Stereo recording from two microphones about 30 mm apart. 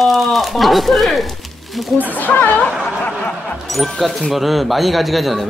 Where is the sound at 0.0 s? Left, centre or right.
Centre.